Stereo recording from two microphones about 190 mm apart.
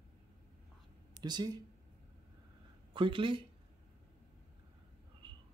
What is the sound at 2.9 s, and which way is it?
Speech, 25° right (ahead or behind).